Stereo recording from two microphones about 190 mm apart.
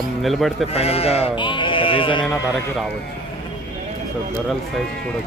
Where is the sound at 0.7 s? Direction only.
30° left (ahead or behind).